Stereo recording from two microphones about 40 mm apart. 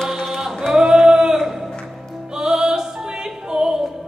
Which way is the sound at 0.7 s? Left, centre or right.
Centre.